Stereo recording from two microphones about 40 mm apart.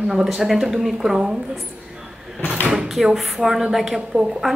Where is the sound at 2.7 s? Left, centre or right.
Centre.